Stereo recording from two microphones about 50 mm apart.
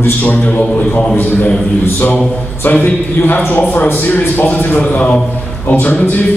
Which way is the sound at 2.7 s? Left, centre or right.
Left.